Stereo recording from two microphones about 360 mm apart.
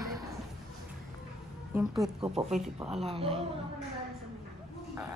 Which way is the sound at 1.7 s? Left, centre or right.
Centre.